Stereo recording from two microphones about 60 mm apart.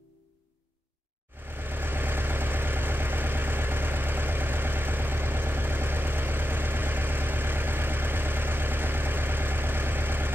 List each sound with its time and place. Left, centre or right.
1.4 s vehicle: right